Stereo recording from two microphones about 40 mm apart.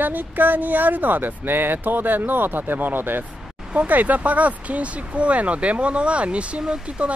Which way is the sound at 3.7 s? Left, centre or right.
Right.